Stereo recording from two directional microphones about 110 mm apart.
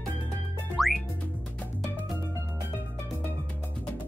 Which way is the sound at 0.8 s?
Centre (ahead or behind).